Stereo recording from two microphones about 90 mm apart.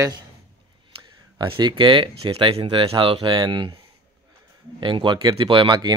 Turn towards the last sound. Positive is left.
turn(degrees=-55)  # may be behind; listen again after turning